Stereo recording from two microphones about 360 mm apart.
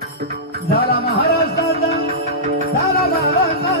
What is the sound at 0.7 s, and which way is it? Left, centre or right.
Music, left.